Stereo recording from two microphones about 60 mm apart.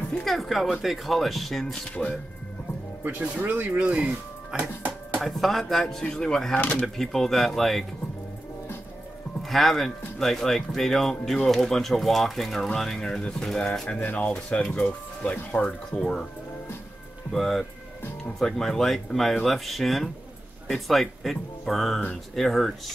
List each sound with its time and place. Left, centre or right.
0.2 s speech: centre
3.0 s speech: right
3.9 s speech: centre
5.2 s speech: centre
6.5 s speech: left
7.0 s speech: centre
9.4 s speech: centre
17.3 s speech: centre